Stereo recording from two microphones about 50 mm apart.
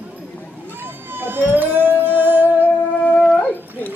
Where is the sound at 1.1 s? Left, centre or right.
Right.